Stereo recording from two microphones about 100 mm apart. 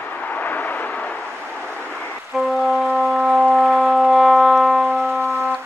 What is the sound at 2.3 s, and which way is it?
Music, centre (ahead or behind).